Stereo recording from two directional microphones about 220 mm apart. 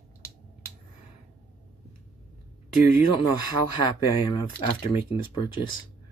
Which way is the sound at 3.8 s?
20° left (ahead or behind).